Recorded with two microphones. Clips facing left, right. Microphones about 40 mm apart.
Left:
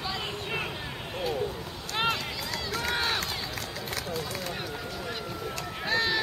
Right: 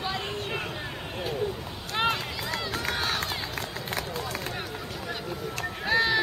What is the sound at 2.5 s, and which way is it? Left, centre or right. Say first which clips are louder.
Run: right 1 dB; right.